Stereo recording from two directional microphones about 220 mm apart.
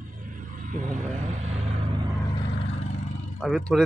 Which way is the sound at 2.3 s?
30° left (ahead or behind).